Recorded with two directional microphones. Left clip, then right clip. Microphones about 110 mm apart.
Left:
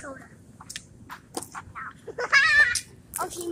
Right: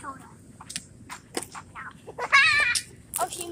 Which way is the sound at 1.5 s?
30° left (ahead or behind).